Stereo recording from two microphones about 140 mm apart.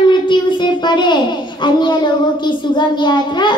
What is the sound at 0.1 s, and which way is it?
Child singing, 35° left (ahead or behind).